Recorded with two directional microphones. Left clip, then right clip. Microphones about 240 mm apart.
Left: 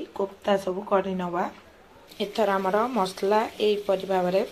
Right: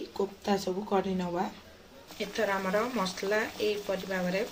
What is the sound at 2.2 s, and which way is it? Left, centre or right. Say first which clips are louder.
Speech: left 6 dB; centre.